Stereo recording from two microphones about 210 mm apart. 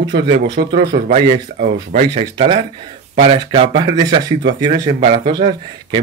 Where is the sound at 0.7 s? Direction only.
40° right (ahead or behind).